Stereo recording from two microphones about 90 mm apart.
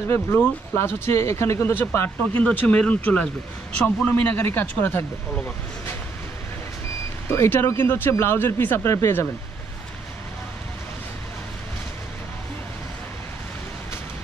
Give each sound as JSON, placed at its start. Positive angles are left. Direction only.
{"t": 0.1, "sound": "speech", "side_deg": 30}
{"t": 7.2, "sound": "speech", "side_deg": 25}